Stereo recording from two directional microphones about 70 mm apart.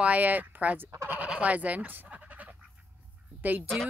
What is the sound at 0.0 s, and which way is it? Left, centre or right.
Speech, right.